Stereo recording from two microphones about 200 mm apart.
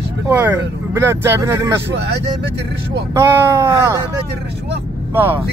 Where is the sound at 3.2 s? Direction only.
15° right (ahead or behind).